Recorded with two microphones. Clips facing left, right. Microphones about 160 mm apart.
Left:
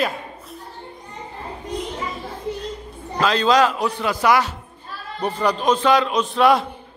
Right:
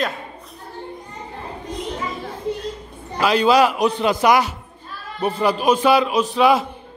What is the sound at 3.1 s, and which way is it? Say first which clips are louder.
A man's voice: right 2 dB; 10° right (ahead or behind).